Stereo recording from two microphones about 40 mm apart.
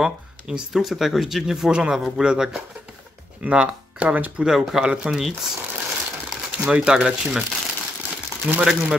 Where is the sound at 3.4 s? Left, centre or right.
Right.